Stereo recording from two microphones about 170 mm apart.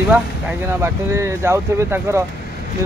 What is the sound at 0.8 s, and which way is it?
Speech, 15° right (ahead or behind).